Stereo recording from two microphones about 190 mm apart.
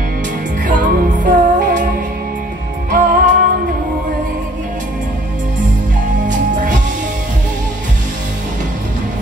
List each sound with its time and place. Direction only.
0.7 s music: 40° right (ahead or behind)
2.9 s music: 45° right (ahead or behind)
6.2 s music: 40° right (ahead or behind)